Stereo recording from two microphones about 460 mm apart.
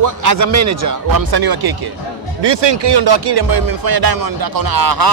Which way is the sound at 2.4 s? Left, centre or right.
Right.